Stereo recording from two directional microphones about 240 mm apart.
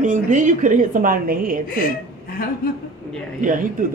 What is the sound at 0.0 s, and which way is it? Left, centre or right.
A woman's voice, right.